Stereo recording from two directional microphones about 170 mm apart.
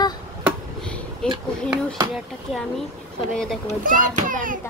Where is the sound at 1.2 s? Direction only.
5° left (ahead or behind).